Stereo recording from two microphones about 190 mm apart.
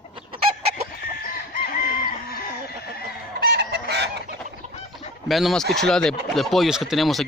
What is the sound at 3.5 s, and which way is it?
Chicken, 60° right (ahead or behind).